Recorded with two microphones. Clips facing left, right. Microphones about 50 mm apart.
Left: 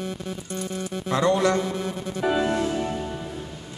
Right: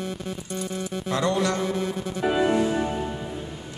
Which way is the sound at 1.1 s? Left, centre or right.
Left.